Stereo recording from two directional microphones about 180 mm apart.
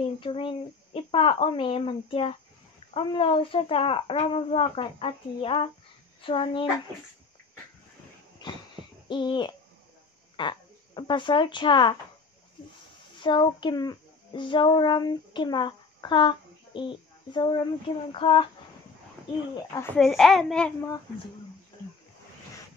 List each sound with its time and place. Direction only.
0.2 s a child's voice: 30° left (ahead or behind)
8.4 s a sound: 25° left (ahead or behind)
9.1 s speech: 25° left (ahead or behind)
13.2 s child singing: 25° left (ahead or behind)
17.3 s a child's voice: 25° left (ahead or behind)
20.0 s a child's voice: centre (ahead or behind)